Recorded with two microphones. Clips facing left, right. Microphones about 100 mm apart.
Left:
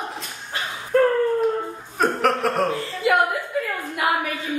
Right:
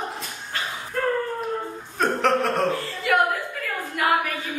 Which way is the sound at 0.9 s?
50° left (ahead or behind).